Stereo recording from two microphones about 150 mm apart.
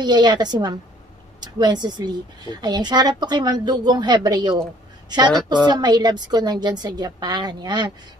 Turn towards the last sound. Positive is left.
turn(degrees=-30)  # may be behind; listen again after turning